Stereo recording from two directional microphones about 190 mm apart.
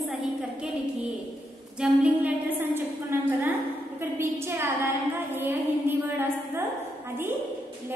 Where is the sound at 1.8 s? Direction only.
5° right (ahead or behind).